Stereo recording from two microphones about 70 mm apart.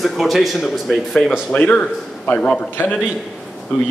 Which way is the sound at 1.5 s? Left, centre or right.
Centre.